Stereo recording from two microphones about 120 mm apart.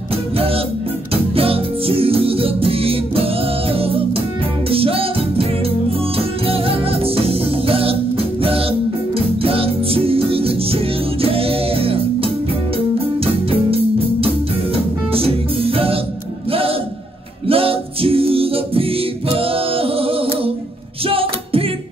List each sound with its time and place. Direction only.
1.1 s music: 50° right (ahead or behind)
15.1 s music: 50° right (ahead or behind)
17.5 s music: 50° right (ahead or behind)